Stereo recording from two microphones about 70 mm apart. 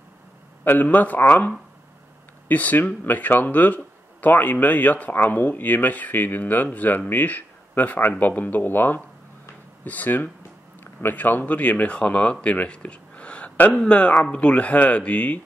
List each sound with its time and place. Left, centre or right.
0.7 s speech: left